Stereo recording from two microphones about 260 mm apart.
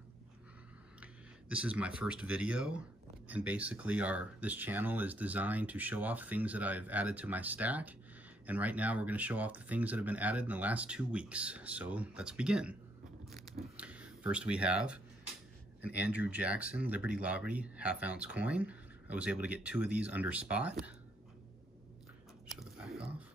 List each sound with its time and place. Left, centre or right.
1.5 s speech: centre
22.5 s chewing: centre